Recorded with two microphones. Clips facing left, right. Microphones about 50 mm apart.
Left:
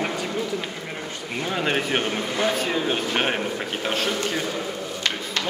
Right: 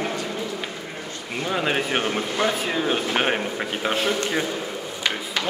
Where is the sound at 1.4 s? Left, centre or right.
Centre.